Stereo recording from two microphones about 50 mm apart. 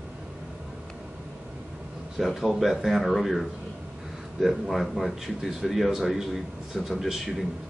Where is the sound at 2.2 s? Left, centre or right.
Centre.